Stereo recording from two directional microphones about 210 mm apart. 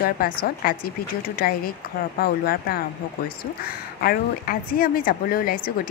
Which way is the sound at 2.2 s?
45° left (ahead or behind).